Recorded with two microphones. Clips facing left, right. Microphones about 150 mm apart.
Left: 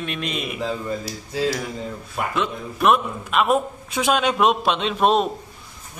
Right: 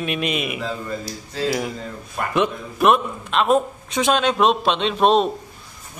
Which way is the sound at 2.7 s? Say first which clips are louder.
Right 1 dB; centre (ahead or behind).